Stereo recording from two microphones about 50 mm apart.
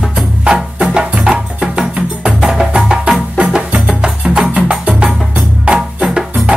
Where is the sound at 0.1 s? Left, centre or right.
Centre.